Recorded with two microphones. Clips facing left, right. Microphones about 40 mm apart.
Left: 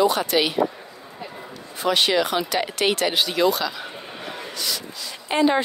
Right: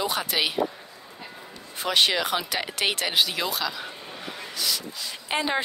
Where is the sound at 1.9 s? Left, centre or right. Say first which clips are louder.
Left 2 dB; right.